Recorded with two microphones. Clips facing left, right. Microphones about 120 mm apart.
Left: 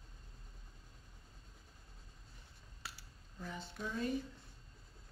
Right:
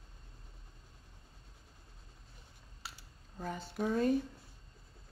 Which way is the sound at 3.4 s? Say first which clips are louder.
Right 8 dB; 45° right (ahead or behind).